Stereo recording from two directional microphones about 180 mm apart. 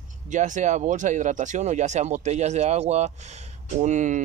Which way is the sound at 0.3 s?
45° right (ahead or behind).